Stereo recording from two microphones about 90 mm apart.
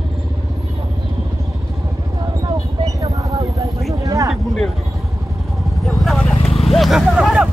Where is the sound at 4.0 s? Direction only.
35° right (ahead or behind).